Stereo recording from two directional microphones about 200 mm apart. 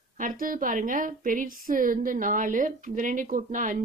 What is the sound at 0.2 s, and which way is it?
A woman's voice, 45° right (ahead or behind).